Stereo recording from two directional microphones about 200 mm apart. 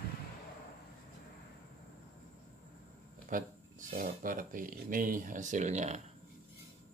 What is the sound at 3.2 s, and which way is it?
Speech, 40° right (ahead or behind).